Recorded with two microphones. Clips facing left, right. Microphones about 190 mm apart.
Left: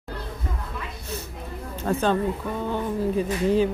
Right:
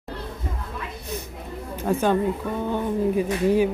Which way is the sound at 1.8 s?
10° right (ahead or behind).